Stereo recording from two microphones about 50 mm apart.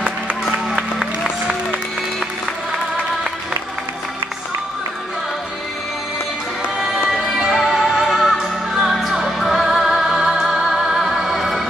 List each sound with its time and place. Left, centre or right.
0.7 s applause: centre
7.5 s music: centre